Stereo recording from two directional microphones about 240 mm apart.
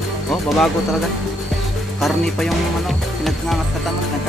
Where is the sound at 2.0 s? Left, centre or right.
Centre.